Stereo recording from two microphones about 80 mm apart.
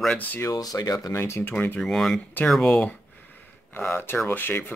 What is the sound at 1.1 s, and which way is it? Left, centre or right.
Speech, left.